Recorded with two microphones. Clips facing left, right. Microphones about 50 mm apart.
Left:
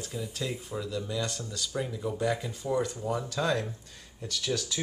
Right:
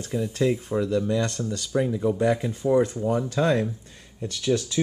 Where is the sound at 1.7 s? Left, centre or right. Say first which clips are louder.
Right 10 dB; right.